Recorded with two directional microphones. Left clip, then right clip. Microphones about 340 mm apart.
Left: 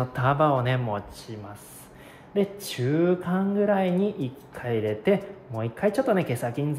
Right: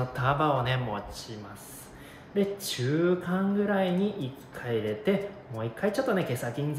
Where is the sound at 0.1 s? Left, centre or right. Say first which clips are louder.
Left 4 dB; centre.